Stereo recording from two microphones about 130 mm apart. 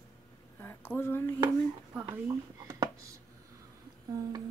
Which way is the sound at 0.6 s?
15° left (ahead or behind).